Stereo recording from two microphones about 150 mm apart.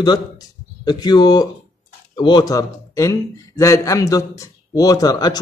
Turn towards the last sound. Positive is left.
turn(degrees=25)  # may be behind; listen again after turning